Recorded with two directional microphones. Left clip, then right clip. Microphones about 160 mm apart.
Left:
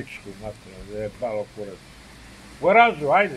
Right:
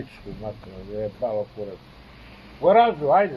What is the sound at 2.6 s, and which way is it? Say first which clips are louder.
Speech: even; 20° left (ahead or behind).